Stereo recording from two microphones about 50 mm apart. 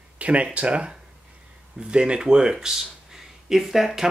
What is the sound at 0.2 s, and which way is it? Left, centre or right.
Speech, right.